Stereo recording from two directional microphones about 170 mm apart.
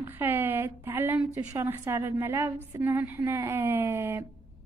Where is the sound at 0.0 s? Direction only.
10° right (ahead or behind).